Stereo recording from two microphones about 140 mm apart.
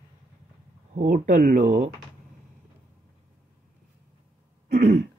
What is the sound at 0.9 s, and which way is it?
Speech, 75° right (ahead or behind).